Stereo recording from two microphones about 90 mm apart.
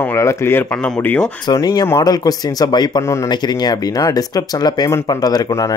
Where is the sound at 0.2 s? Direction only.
30° left (ahead or behind).